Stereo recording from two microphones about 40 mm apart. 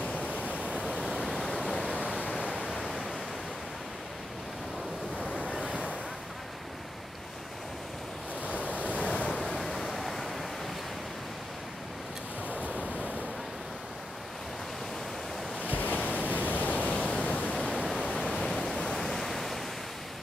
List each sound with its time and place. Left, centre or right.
0.0 s pink noise: left
0.7 s pink noise: right
2.2 s pink noise: right
5.5 s waves: right
8.6 s waves: left
9.6 s waves: centre
12.4 s waves: right
15.7 s waves: left
16.8 s pink noise: left
18.3 s pink noise: centre